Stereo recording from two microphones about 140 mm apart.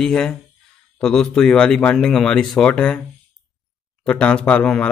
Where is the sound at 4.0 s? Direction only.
5° left (ahead or behind).